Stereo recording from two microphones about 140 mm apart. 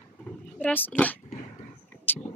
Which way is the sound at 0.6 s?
10° left (ahead or behind).